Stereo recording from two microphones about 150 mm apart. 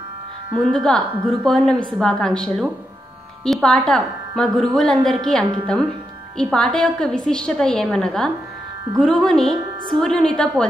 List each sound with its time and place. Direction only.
0.6 s a woman's voice: 5° left (ahead or behind)